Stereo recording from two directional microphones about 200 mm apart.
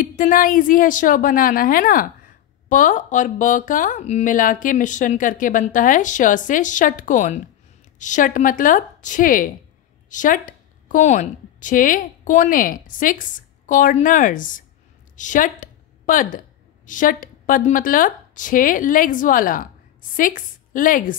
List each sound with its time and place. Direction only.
0.0 s a woman's voice: 40° left (ahead or behind)
15.1 s a sound: 40° left (ahead or behind)
16.8 s speech: 40° left (ahead or behind)